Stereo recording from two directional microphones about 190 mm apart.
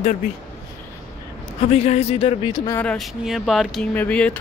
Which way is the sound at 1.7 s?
35° left (ahead or behind).